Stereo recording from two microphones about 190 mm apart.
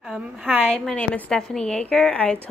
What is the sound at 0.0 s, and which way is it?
A woman's voice, centre (ahead or behind).